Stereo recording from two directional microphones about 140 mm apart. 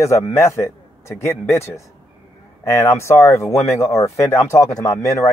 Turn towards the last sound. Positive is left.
turn(degrees=25)  # may be behind; listen again after turning